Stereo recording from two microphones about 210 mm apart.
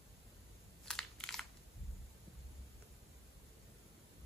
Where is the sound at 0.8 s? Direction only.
5° left (ahead or behind).